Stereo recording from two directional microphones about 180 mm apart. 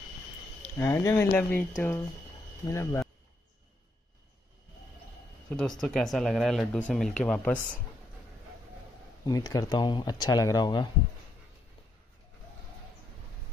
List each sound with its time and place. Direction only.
0.6 s speech: 15° left (ahead or behind)
5.5 s speech: 5° left (ahead or behind)
9.2 s speech: 20° left (ahead or behind)